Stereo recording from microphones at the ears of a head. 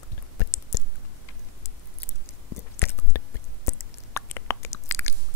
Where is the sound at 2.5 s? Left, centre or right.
Left.